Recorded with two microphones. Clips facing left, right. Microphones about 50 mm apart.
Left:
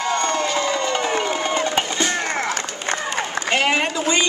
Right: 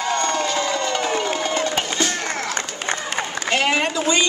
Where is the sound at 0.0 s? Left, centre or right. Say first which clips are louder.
Even; centre.